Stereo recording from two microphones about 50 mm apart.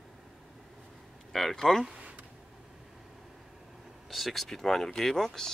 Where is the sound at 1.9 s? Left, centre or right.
Right.